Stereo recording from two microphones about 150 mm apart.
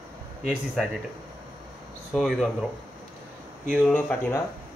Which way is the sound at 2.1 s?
Centre (ahead or behind).